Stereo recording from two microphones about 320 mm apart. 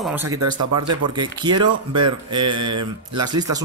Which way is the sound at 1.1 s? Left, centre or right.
Centre.